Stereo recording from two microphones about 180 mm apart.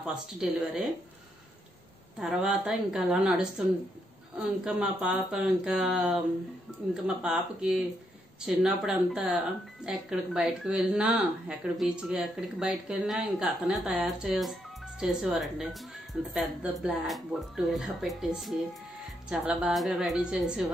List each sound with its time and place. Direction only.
0.0 s speech: 5° right (ahead or behind)
2.1 s speech: 5° right (ahead or behind)